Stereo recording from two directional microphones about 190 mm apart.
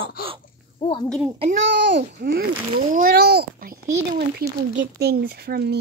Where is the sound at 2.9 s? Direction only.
50° right (ahead or behind).